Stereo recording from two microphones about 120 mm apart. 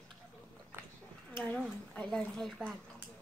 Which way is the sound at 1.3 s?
5° left (ahead or behind).